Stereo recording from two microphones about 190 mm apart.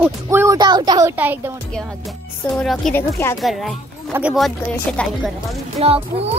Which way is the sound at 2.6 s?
5° left (ahead or behind).